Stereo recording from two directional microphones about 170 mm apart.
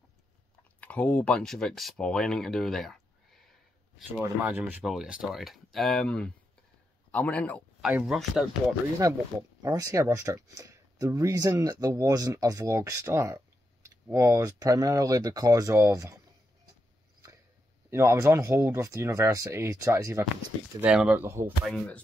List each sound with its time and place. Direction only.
0.7 s speech: 10° left (ahead or behind)
4.2 s speech: 10° right (ahead or behind)
9.0 s speech: 20° right (ahead or behind)
17.8 s speech: 15° right (ahead or behind)
20.8 s speech: 5° right (ahead or behind)
21.6 s speech: 5° left (ahead or behind)